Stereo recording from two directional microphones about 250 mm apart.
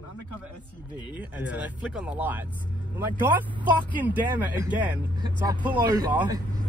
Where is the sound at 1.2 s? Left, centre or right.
Centre.